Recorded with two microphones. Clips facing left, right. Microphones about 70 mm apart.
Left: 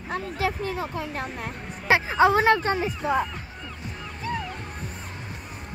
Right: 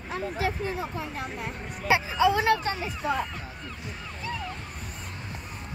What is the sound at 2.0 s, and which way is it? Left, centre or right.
Speech, left.